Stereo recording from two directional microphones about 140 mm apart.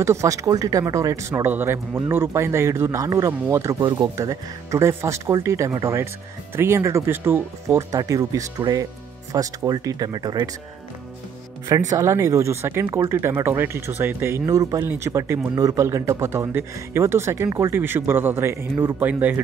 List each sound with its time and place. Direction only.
0.0 s speech: 20° right (ahead or behind)
3.8 s speech: 30° right (ahead or behind)
11.9 s speech: 20° right (ahead or behind)